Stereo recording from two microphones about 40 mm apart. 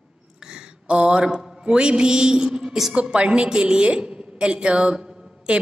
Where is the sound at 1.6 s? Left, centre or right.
Right.